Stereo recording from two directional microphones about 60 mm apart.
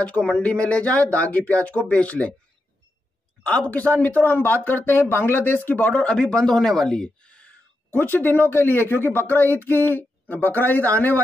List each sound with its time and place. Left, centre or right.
0.2 s speech: centre
3.4 s speech: left
5.7 s speech: left
7.9 s speech: left